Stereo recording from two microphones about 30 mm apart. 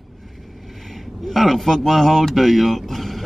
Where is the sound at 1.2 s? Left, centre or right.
Centre.